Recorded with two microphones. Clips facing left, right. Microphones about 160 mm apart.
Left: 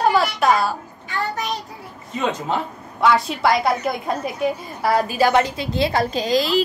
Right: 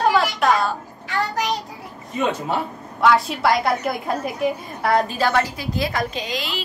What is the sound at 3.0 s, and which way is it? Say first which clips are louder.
A woman's voice: even; centre (ahead or behind).